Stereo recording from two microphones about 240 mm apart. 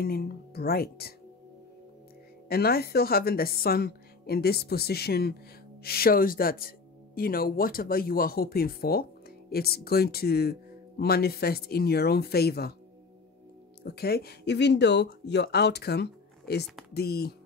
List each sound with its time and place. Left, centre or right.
0.0 s speech: left
2.4 s speech: left
13.8 s speech: left